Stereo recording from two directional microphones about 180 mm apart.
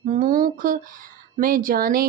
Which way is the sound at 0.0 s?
45° right (ahead or behind).